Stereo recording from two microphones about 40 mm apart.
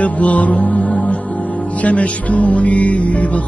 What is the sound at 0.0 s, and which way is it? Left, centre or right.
Music, left.